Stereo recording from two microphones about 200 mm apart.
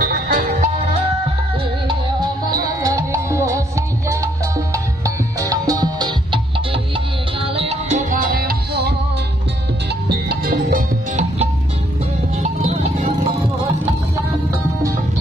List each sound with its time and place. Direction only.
0.0 s music: 45° right (ahead or behind)
2.5 s music: 15° right (ahead or behind); by 8.9 s 50° right (ahead or behind)
10.0 s music: 50° right (ahead or behind)